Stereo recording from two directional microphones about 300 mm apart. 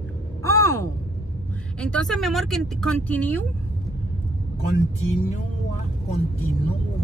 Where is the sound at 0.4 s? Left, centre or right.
Centre.